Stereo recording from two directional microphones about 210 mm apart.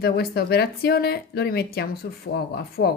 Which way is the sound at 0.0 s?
50° left (ahead or behind).